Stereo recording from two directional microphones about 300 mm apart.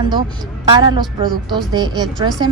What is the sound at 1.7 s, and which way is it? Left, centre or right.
Speech, centre.